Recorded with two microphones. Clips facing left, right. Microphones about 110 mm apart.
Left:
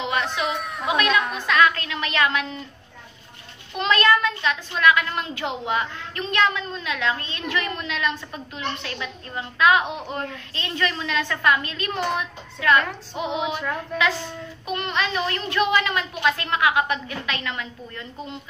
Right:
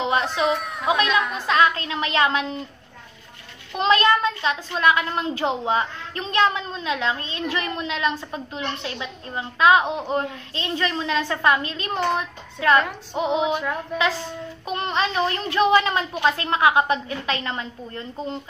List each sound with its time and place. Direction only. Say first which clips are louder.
0.0 s a sound: right 3 dB; 30° right (ahead or behind)
0.5 s a child's voice: right 4 dB; centre (ahead or behind)
0.8 s a child's voice: right 1 dB; 25° right (ahead or behind)
3.7 s a child's voice: right 1 dB; 25° right (ahead or behind)
13.5 s speech: right 3 dB; 10° right (ahead or behind)
14.7 s a child's voice: right 2 dB; 30° right (ahead or behind)